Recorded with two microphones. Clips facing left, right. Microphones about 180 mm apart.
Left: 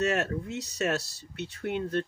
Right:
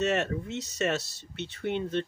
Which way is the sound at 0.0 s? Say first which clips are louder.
Even; centre (ahead or behind).